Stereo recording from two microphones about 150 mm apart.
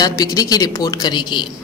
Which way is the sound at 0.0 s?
25° left (ahead or behind).